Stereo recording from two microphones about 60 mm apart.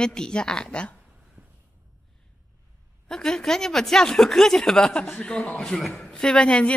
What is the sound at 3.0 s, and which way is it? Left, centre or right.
Speech, centre.